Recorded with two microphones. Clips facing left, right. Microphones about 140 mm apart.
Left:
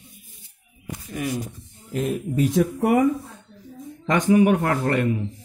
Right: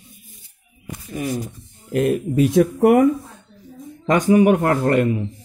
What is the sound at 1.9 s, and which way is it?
Speech, 65° right (ahead or behind).